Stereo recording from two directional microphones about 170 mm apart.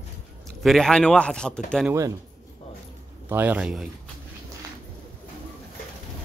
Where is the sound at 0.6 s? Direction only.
Centre (ahead or behind).